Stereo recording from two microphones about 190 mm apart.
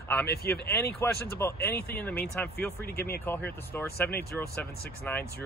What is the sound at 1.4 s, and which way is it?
Speech, 10° left (ahead or behind).